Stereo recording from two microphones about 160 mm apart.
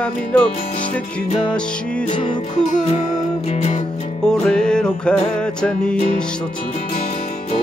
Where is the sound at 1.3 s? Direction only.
30° left (ahead or behind).